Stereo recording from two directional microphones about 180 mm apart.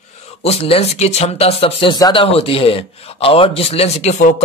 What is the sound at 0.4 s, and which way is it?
Speech, 35° left (ahead or behind).